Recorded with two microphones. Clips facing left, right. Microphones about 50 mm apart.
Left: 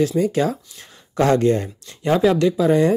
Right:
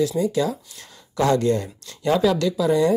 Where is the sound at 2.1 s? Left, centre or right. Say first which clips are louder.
Left 3 dB; left.